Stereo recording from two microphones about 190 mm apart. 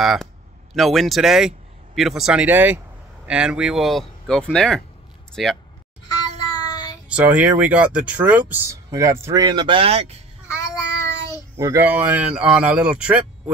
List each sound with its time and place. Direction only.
0.0 s speech: centre (ahead or behind)
6.5 s child singing: 20° left (ahead or behind)
7.1 s speech: 5° right (ahead or behind); by 10.1 s 30° right (ahead or behind)
10.9 s child singing: 15° left (ahead or behind)
11.5 s speech: 15° right (ahead or behind)